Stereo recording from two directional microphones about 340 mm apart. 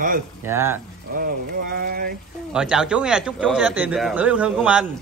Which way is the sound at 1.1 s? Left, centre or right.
Right.